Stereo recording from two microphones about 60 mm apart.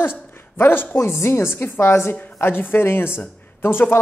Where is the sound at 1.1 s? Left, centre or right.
Left.